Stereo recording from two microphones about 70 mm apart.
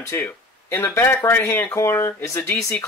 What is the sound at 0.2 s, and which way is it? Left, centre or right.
Speech, left.